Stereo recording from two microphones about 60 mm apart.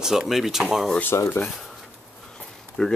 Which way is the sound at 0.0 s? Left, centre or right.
Centre.